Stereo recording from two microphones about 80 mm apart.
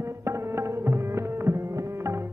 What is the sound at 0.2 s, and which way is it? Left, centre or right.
Music, right.